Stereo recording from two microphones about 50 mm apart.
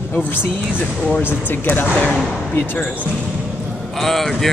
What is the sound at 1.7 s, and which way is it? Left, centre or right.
Speech, left.